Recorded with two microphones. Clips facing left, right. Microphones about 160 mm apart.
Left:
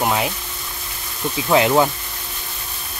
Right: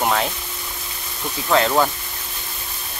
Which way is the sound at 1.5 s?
15° left (ahead or behind).